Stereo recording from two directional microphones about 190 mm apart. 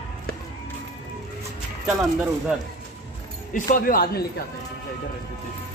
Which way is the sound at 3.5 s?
45° left (ahead or behind).